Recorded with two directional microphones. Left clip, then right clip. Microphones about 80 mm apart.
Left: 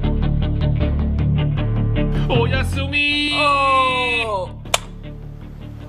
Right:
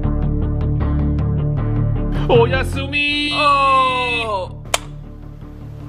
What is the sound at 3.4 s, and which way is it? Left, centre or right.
Speech, left.